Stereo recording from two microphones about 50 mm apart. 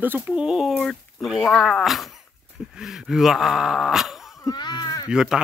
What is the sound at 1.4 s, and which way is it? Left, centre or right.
Speech, centre.